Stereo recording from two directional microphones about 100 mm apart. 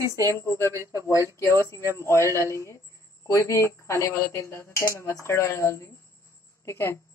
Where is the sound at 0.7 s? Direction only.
30° right (ahead or behind).